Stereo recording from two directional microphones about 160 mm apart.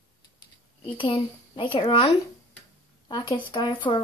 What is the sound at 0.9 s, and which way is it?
Speech, 30° left (ahead or behind).